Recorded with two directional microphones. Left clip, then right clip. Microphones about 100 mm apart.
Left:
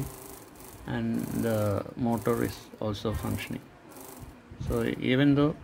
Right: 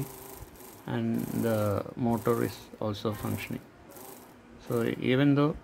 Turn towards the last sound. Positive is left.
turn(degrees=-20)  # may be behind; listen again after turning